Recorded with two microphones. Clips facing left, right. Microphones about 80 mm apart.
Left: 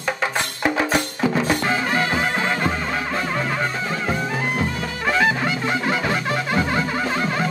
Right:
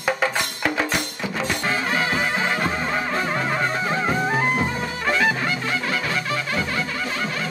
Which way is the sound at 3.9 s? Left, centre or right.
Right.